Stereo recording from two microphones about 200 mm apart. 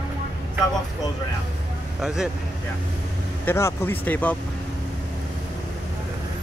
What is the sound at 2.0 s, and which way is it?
Speech, centre (ahead or behind).